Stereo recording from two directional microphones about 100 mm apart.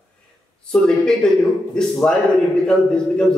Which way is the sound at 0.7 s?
10° left (ahead or behind).